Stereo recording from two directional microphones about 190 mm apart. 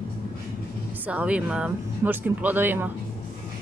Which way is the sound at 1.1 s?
5° right (ahead or behind).